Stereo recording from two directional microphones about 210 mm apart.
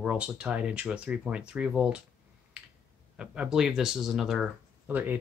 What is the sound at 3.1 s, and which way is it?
Speech, 5° right (ahead or behind).